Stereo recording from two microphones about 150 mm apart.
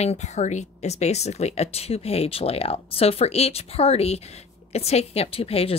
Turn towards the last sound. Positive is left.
turn(degrees=40)  # may be behind; listen again after turning